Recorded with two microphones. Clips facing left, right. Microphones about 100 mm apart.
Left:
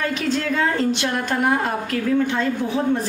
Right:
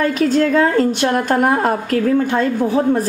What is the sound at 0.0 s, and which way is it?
A woman's voice, 45° right (ahead or behind).